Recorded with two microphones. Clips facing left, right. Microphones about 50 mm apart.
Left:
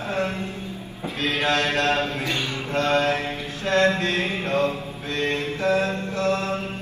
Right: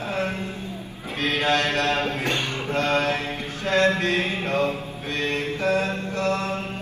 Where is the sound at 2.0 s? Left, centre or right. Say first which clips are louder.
Right 1 dB; right.